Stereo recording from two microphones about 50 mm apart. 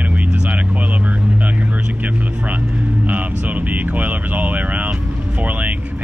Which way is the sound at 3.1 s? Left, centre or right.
Right.